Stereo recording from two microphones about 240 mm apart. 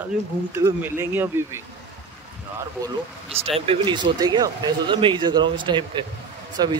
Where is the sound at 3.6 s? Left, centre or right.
Right.